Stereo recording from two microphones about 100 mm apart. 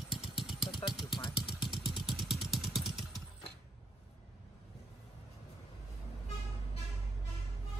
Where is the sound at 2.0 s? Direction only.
Centre (ahead or behind).